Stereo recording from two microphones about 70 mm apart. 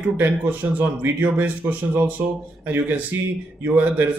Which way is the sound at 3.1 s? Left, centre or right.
Right.